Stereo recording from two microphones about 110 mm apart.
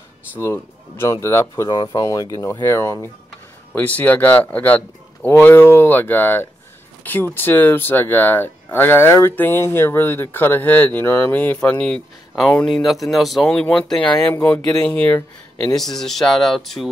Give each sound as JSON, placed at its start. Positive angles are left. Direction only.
{"t": 0.3, "sound": "speech", "side_deg": 25}
{"t": 15.7, "sound": "speech", "side_deg": 5}